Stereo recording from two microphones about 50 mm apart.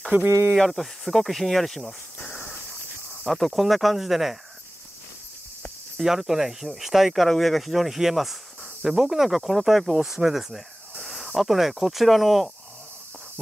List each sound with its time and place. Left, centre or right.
0.1 s speech: right
0.6 s speech: centre
3.3 s speech: centre
5.9 s speech: centre